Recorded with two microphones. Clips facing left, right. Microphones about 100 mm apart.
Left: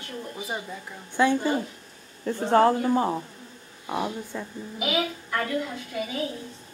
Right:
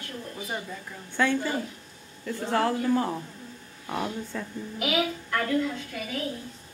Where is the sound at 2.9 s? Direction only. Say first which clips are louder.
Left 2 dB; 20° left (ahead or behind); by 5.4 s 5° left (ahead or behind).